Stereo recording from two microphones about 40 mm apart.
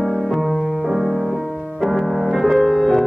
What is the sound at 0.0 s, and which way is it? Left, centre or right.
Music, centre.